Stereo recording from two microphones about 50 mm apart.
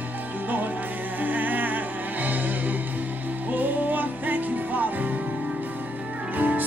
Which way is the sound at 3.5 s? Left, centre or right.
Right.